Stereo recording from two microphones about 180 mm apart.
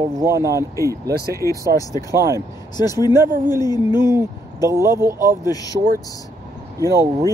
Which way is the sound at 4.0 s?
15° right (ahead or behind).